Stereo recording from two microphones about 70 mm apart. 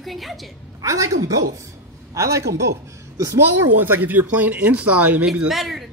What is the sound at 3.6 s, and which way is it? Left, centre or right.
Speech, right.